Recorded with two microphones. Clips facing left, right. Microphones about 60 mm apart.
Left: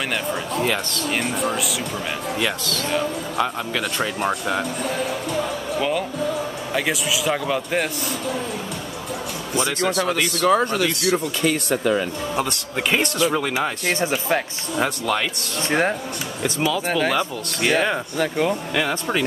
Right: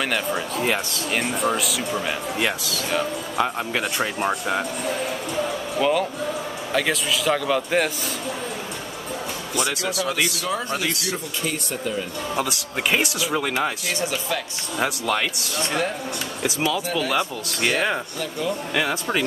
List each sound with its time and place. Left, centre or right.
0.1 s speech: centre
2.3 s speech: centre
5.8 s speech: centre
9.7 s speech: centre
10.4 s speech: left
10.9 s speech: centre
11.4 s speech: left
12.4 s speech: centre
13.9 s speech: left
14.8 s speech: centre